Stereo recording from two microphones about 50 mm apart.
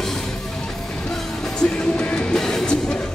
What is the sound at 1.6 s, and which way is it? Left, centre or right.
Music, centre.